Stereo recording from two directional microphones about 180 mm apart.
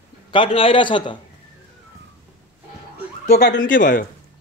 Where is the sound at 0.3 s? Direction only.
30° left (ahead or behind).